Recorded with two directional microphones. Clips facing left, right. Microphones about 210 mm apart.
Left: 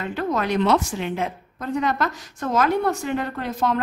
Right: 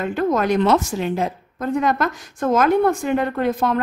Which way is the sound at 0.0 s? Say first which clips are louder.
Right 5 dB; 50° right (ahead or behind).